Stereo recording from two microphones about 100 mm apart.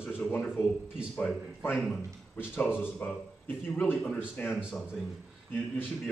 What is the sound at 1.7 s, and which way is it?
Speech, 5° left (ahead or behind).